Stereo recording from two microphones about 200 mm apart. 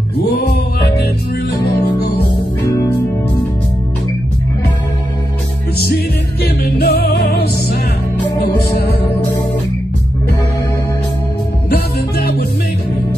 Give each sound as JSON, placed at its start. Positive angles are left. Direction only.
{"t": 0.2, "sound": "music", "side_deg": 50}
{"t": 6.4, "sound": "music", "side_deg": 55}
{"t": 11.7, "sound": "music", "side_deg": 50}